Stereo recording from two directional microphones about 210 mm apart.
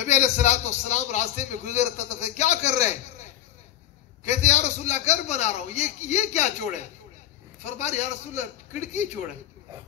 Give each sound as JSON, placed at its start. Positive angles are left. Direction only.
{"t": 0.0, "sound": "a man's voice", "side_deg": 35}